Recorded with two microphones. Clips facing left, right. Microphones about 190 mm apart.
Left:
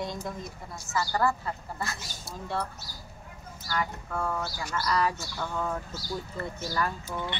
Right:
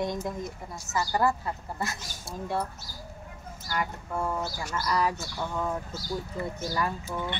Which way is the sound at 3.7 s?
15° right (ahead or behind).